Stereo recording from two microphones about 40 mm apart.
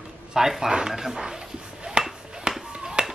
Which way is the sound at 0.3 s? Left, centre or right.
Centre.